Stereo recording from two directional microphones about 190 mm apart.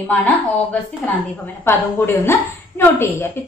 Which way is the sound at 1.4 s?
10° left (ahead or behind).